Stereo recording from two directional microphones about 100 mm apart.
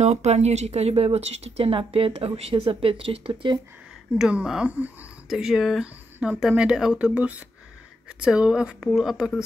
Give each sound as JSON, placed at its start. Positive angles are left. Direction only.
{"t": 0.0, "sound": "speech", "side_deg": -90}
{"t": 4.2, "sound": "speech", "side_deg": -10}
{"t": 5.3, "sound": "speech", "side_deg": -5}